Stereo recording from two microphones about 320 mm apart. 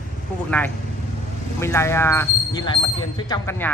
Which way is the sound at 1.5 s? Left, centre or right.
Centre.